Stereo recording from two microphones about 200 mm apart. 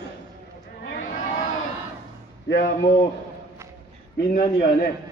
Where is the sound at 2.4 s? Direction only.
55° left (ahead or behind).